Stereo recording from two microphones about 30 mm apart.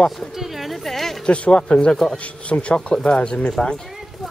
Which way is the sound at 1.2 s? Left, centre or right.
Left.